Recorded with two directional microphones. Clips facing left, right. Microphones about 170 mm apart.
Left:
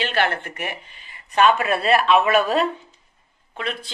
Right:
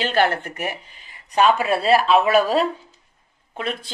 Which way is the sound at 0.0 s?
40° right (ahead or behind).